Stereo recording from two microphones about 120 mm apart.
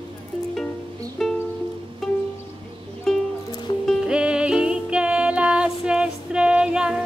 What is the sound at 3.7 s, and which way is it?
Music, 45° left (ahead or behind).